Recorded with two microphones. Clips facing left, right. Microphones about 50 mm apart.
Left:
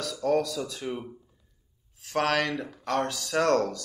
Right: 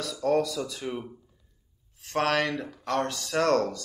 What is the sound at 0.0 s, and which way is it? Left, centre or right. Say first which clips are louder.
Speech: right 1 dB; centre.